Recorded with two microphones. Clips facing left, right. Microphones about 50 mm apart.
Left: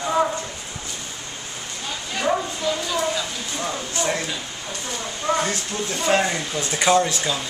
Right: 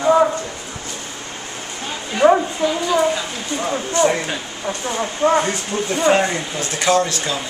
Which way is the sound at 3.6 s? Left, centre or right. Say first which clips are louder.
Right 9 dB; right.